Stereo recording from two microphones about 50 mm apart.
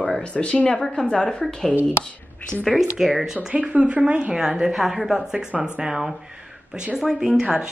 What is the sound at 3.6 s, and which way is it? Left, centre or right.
Speech, right.